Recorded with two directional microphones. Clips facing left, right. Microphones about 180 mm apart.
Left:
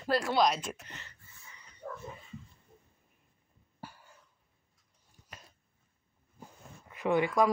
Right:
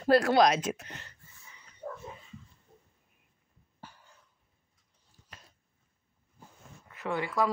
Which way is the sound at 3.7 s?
10° left (ahead or behind).